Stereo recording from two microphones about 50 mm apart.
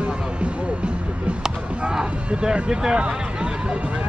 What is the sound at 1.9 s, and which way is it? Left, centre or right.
Speech, centre.